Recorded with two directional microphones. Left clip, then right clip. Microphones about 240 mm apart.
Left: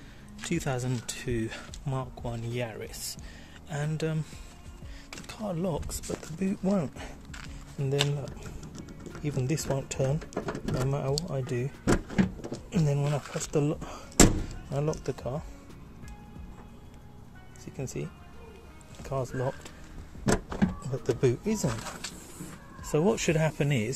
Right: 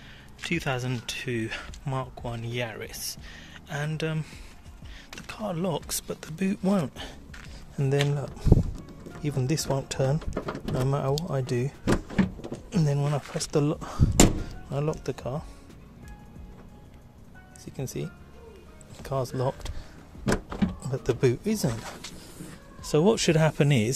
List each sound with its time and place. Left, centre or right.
0.4 s speech: centre
12.4 s power windows: centre
13.1 s speech: centre
13.5 s speech: centre
17.7 s speech: centre
20.5 s power windows: centre
22.8 s speech: centre